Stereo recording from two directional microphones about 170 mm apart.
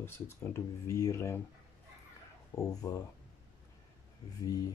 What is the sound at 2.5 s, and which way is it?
Speech, 20° left (ahead or behind).